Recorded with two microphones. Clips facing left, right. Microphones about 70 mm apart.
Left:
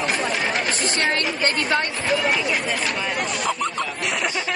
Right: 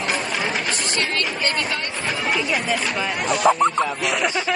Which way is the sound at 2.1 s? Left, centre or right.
Centre.